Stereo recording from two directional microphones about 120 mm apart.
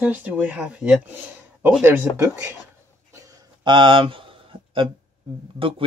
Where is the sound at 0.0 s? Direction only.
15° right (ahead or behind).